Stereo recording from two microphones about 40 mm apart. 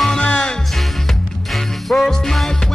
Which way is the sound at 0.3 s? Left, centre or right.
Left.